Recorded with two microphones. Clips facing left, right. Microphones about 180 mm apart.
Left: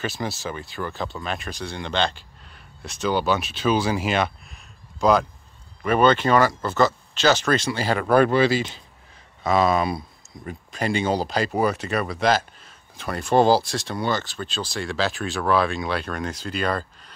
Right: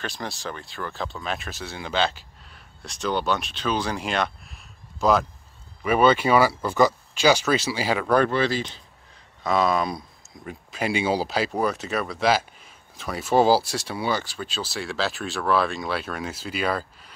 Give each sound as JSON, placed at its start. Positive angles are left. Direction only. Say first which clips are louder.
{"t": 0.0, "sound": "speech", "louder": "left 4 dB", "side_deg": 5}
{"t": 8.1, "sound": "speech", "louder": "left 4 dB", "side_deg": 10}